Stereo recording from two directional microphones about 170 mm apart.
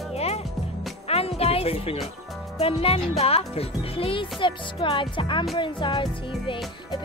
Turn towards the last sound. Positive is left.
turn(degrees=30)  # may be behind; listen again after turning